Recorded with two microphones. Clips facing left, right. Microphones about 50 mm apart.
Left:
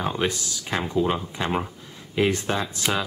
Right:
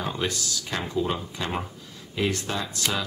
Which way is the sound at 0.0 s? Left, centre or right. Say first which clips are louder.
Left 3 dB; left.